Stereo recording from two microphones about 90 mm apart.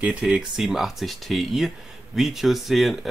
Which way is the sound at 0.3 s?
5° right (ahead or behind).